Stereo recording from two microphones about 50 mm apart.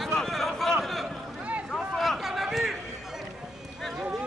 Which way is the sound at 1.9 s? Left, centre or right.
Centre.